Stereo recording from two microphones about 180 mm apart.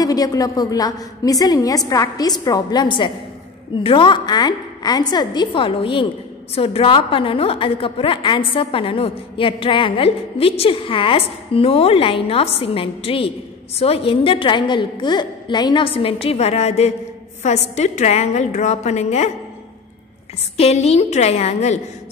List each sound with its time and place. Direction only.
0.0 s a woman's voice: 20° left (ahead or behind); by 19.3 s 35° left (ahead or behind)
20.5 s a woman's voice: 35° left (ahead or behind)